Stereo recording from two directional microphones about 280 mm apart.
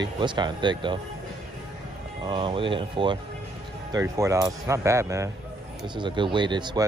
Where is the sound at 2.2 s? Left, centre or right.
Centre.